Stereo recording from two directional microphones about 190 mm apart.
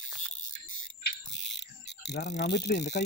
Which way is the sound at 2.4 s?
65° left (ahead or behind).